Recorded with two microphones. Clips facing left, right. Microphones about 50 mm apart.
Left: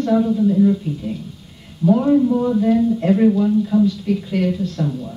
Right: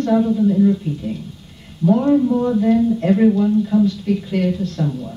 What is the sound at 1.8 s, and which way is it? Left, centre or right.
A woman's voice, centre.